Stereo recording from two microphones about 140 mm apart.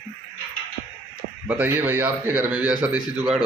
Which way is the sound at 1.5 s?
15° right (ahead or behind).